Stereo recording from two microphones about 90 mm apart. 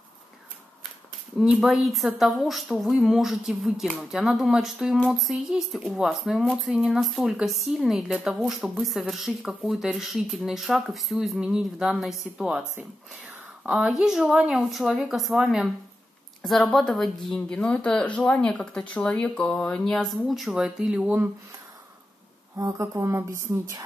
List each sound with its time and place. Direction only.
1.4 s a woman's voice: 10° right (ahead or behind)
22.6 s speech: 40° right (ahead or behind)